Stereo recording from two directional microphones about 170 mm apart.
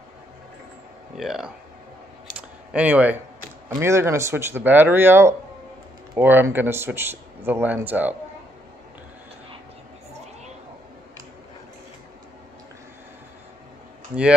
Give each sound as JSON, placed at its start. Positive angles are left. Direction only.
{"t": 1.1, "sound": "speech", "side_deg": -5}
{"t": 2.7, "sound": "speech", "side_deg": -10}